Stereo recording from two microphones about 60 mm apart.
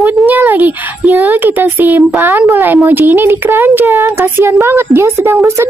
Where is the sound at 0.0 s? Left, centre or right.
Right.